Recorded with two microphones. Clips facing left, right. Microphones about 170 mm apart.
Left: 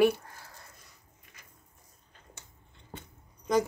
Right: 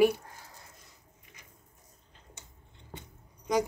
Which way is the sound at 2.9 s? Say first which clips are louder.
Left 1 dB; 15° right (ahead or behind).